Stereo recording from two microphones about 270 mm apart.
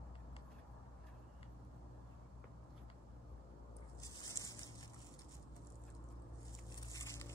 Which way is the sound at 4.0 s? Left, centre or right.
Centre.